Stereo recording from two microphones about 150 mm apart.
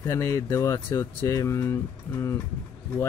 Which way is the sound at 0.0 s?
20° left (ahead or behind).